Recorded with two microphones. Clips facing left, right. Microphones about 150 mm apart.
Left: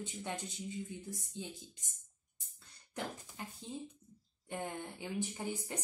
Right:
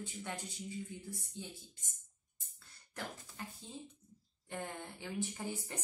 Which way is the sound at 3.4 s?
15° left (ahead or behind).